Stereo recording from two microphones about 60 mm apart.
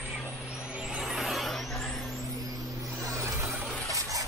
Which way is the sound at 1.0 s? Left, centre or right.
Centre.